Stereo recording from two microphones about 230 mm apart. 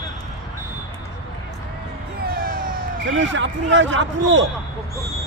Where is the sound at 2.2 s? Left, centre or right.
Right.